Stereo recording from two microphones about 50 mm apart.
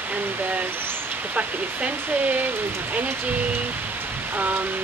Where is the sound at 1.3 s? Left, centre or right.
Right.